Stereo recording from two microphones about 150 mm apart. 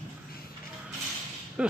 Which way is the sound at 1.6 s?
5° right (ahead or behind).